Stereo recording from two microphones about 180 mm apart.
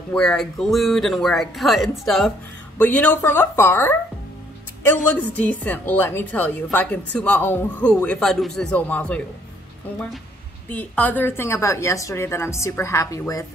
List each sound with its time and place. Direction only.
0.1 s a woman's voice: 5° left (ahead or behind)
10.7 s a woman's voice: 10° left (ahead or behind)